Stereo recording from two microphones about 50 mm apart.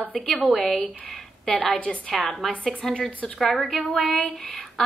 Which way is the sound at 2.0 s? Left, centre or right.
Centre.